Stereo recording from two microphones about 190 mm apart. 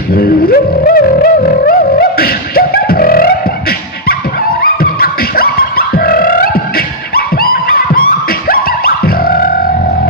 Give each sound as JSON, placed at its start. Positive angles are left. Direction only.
{"t": 0.1, "sound": "music", "side_deg": 50}
{"t": 5.0, "sound": "music", "side_deg": 50}
{"t": 7.2, "sound": "a sound", "side_deg": 50}